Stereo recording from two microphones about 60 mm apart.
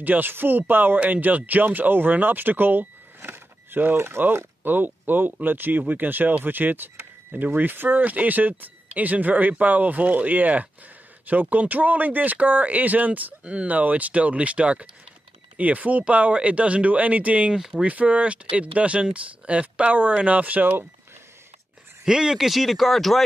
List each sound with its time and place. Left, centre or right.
0.0 s speech: right
17.6 s speech: centre
17.8 s speech: right
22.0 s speech: centre